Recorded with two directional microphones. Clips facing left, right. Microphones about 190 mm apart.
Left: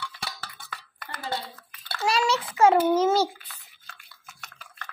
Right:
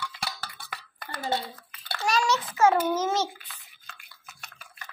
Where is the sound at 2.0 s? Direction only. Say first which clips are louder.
Left 1 dB; 30° left (ahead or behind).